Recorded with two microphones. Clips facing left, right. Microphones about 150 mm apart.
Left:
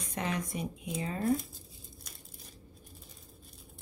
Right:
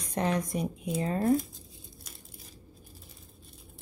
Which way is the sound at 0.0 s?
35° right (ahead or behind).